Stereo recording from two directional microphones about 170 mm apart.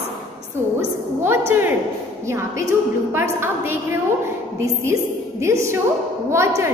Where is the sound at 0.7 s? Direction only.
15° right (ahead or behind).